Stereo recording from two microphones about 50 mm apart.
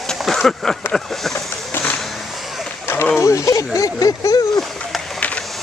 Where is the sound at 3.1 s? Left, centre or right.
Left.